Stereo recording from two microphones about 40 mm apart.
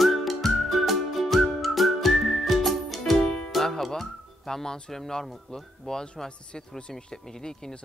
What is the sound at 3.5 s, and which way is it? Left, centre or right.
Music, centre.